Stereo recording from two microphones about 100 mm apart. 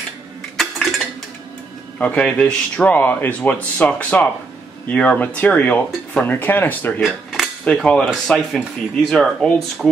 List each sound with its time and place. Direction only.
0.6 s dishes: centre (ahead or behind)
2.0 s speech: 10° left (ahead or behind)
7.6 s speech: 5° left (ahead or behind)